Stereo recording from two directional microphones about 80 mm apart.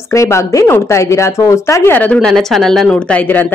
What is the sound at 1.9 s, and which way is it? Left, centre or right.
Speech, centre.